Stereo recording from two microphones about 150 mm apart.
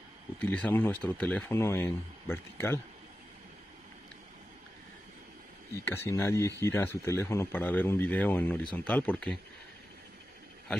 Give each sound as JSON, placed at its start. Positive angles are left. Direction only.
{"t": 0.4, "sound": "speech", "side_deg": 10}
{"t": 5.9, "sound": "speech", "side_deg": 20}